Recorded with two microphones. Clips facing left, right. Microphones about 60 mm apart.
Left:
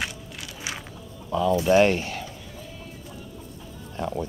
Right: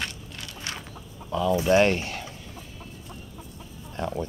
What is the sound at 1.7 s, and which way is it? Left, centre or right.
Speech, centre.